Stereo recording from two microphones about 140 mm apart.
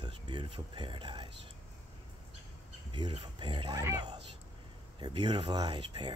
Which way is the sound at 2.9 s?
35° right (ahead or behind).